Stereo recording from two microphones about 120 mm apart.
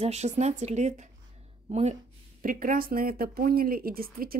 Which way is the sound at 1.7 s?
65° right (ahead or behind).